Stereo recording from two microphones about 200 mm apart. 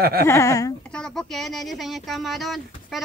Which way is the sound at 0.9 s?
5° left (ahead or behind).